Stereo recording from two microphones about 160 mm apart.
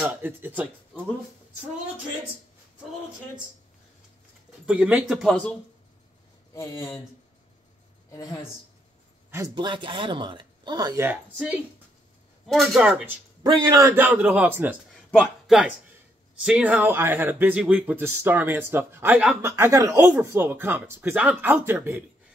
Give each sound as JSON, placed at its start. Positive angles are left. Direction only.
{"t": 0.0, "sound": "speech", "side_deg": -10}
{"t": 4.6, "sound": "speech", "side_deg": -5}
{"t": 6.5, "sound": "speech", "side_deg": 20}
{"t": 9.6, "sound": "speech", "side_deg": -30}
{"t": 11.1, "sound": "speech", "side_deg": -10}
{"t": 12.8, "sound": "speech", "side_deg": -10}
{"t": 13.5, "sound": "a man's voice", "side_deg": -25}
{"t": 13.8, "sound": "speech", "side_deg": -10}